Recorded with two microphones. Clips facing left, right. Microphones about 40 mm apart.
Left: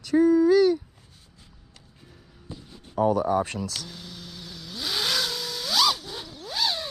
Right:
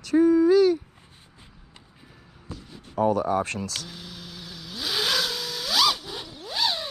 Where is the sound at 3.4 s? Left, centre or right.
Right.